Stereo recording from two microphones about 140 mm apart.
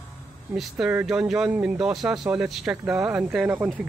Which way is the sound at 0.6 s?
5° right (ahead or behind).